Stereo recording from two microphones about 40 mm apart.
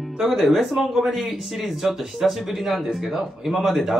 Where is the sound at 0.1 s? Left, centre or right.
Centre.